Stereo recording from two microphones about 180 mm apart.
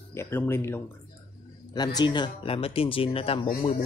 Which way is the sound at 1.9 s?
25° left (ahead or behind).